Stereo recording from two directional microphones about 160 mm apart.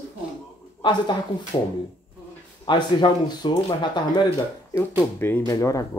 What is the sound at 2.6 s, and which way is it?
Speech, 30° left (ahead or behind).